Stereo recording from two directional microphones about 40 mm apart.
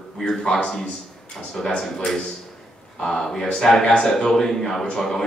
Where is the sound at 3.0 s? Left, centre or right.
Centre.